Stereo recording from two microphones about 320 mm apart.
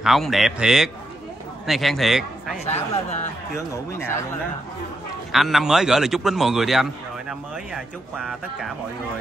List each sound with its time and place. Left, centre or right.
0.0 s a man's voice: centre
2.6 s speech: left
5.3 s a man's voice: centre